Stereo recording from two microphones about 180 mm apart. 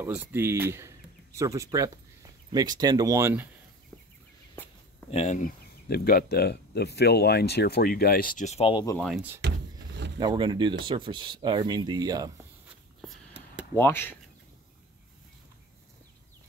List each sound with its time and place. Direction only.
0.0 s speech: 10° right (ahead or behind)
5.1 s speech: 40° left (ahead or behind)
5.9 s speech: 55° left (ahead or behind); by 8.8 s 30° left (ahead or behind)
9.4 s power windows: 75° right (ahead or behind)
10.1 s speech: 25° right (ahead or behind)
13.7 s speech: 10° left (ahead or behind)